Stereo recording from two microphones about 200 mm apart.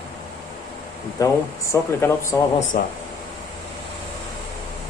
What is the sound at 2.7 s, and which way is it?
Speech, 50° left (ahead or behind).